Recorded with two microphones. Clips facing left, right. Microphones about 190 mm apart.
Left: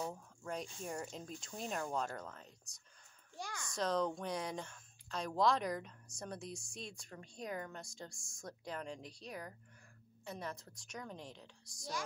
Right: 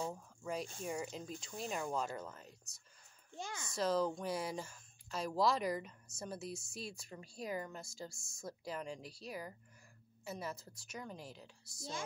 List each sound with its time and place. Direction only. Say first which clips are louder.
0.1 s speech: right 2 dB; 5° right (ahead or behind)
3.3 s a child's voice: right 1 dB; 20° right (ahead or behind)
3.6 s speech: right 1 dB; 5° right (ahead or behind)